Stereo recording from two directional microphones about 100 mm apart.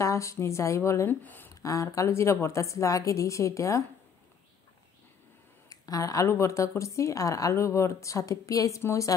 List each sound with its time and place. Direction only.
0.0 s speech: 30° left (ahead or behind)
1.2 s speech: 20° left (ahead or behind)
1.5 s speech: 35° left (ahead or behind)
5.7 s speech: 35° left (ahead or behind)